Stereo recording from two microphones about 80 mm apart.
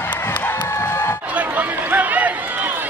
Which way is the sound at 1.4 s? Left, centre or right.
Right.